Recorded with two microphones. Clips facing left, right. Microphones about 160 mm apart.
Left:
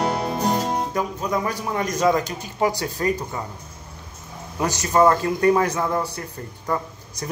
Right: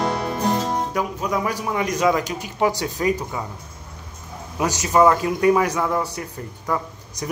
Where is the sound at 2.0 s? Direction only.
10° right (ahead or behind).